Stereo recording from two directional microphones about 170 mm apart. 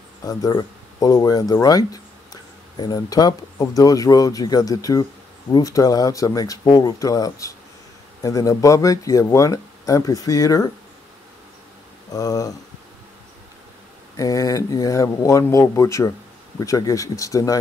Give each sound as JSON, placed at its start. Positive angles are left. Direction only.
{"t": 0.2, "sound": "speech", "side_deg": 20}
{"t": 12.1, "sound": "speech", "side_deg": 20}
{"t": 14.1, "sound": "speech", "side_deg": 20}